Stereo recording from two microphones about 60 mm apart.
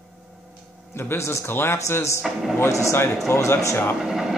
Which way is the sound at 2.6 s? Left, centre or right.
Left.